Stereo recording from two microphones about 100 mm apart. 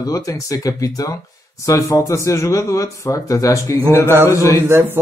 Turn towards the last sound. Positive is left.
turn(degrees=-25)  # may be behind; listen again after turning